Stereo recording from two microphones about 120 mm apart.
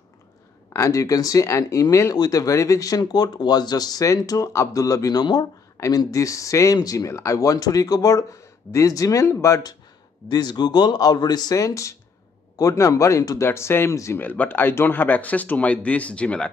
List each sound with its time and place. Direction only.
0.7 s speech: 25° left (ahead or behind); by 16.4 s 10° left (ahead or behind)